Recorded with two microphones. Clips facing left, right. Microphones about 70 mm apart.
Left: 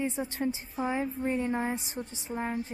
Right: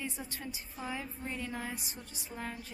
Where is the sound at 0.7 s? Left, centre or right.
Left.